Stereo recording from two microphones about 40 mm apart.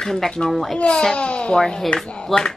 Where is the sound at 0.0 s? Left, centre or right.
Centre.